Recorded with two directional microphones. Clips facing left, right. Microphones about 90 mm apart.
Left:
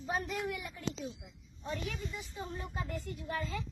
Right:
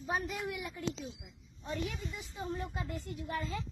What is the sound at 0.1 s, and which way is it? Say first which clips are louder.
Speech: even; 5° right (ahead or behind).